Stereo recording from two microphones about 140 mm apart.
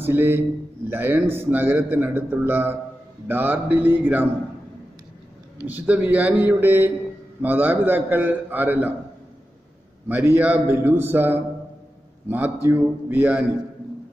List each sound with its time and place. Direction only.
0.0 s a man's voice: 15° right (ahead or behind)
5.7 s a man's voice: 15° right (ahead or behind)
10.0 s a man's voice: 15° right (ahead or behind)